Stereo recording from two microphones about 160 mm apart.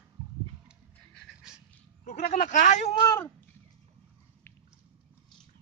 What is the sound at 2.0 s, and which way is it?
Speech, 45° left (ahead or behind).